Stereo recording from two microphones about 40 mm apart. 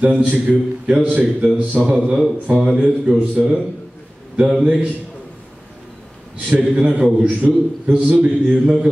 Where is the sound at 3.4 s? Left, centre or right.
Centre.